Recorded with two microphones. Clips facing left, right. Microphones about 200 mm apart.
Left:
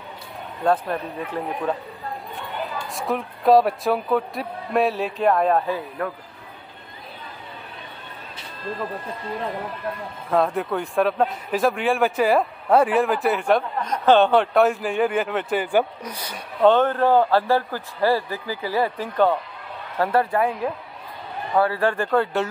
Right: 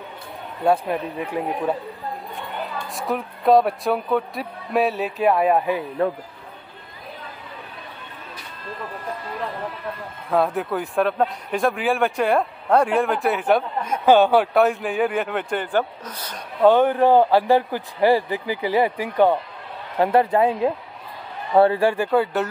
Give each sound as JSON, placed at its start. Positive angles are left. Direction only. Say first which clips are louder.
{"t": 0.7, "sound": "speech", "louder": "right 2 dB", "side_deg": -15}
{"t": 2.9, "sound": "speech", "louder": "even", "side_deg": 0}
{"t": 10.3, "sound": "speech", "louder": "even", "side_deg": 0}
{"t": 16.6, "sound": "a woman's voice", "louder": "right 2 dB", "side_deg": -10}
{"t": 21.7, "sound": "speech", "louder": "right 2 dB", "side_deg": -10}